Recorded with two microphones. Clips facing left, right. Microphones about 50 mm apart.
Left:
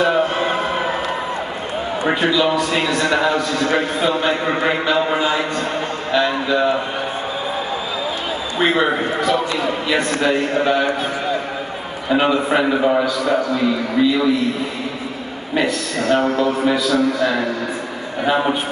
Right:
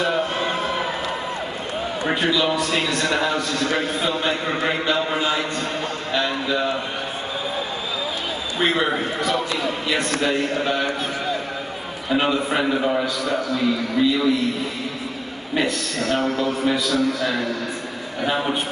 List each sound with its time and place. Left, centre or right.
0.0 s a sound: centre
2.0 s a man's voice: centre
8.5 s a man's voice: centre
12.1 s a man's voice: centre
15.5 s a man's voice: centre